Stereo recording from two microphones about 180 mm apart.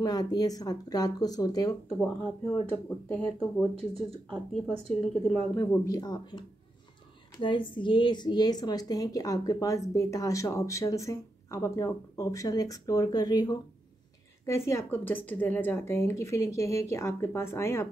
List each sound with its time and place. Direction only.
0.0 s a woman's voice: 20° left (ahead or behind)
1.9 s a woman's voice: 5° left (ahead or behind)
5.6 s a woman's voice: 15° left (ahead or behind)
7.4 s a woman's voice: 25° left (ahead or behind)